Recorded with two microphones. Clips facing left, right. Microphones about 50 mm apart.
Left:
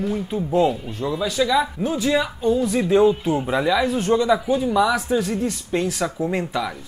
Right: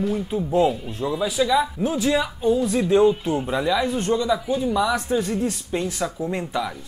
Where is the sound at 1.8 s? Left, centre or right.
Left.